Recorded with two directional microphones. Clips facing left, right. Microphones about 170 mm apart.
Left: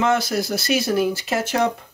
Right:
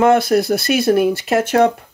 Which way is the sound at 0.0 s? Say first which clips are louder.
Right 7 dB; 55° right (ahead or behind).